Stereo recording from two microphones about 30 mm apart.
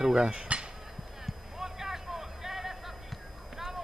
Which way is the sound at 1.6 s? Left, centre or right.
Centre.